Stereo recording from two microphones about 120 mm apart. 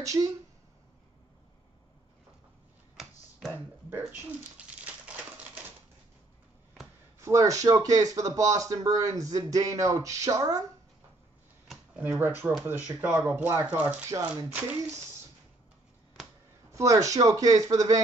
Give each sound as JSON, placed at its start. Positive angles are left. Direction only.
{"t": 0.0, "sound": "speech", "side_deg": -30}
{"t": 3.0, "sound": "a sound", "side_deg": 0}
{"t": 3.9, "sound": "typewriter", "side_deg": -15}
{"t": 7.2, "sound": "speech", "side_deg": -25}
{"t": 12.0, "sound": "speech", "side_deg": -20}
{"t": 16.7, "sound": "speech", "side_deg": -25}